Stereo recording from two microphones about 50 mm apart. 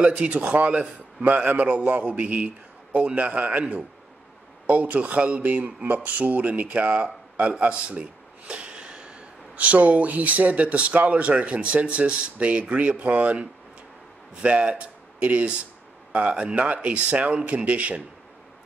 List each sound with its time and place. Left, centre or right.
0.0 s a man's voice: right
4.6 s speech: right